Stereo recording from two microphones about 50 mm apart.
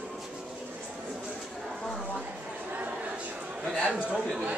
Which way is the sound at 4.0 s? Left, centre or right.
Right.